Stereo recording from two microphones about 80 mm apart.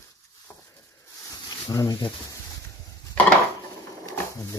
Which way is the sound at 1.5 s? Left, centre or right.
Left.